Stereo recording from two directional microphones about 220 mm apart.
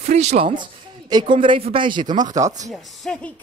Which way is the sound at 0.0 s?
30° right (ahead or behind).